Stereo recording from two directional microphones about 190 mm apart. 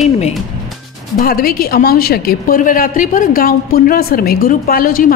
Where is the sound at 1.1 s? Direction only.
50° left (ahead or behind).